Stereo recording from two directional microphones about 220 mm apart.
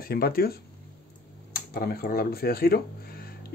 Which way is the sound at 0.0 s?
45° left (ahead or behind).